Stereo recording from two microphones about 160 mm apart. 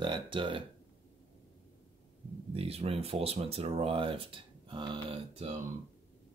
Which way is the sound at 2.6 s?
40° right (ahead or behind).